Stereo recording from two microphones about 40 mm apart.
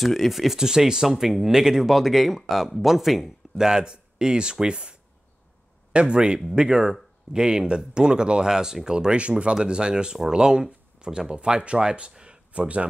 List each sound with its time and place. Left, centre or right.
0.0 s speech: centre
0.6 s speech: centre
3.5 s speech: centre
5.9 s speech: right
12.5 s speech: right